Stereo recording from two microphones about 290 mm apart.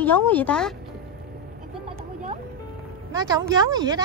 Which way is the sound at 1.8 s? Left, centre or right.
Centre.